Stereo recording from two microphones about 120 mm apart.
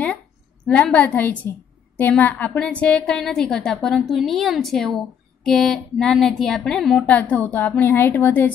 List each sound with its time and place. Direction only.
0.7 s a woman's voice: 10° left (ahead or behind)